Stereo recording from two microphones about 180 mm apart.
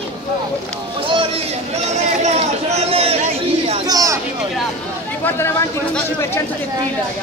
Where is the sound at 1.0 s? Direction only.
30° right (ahead or behind).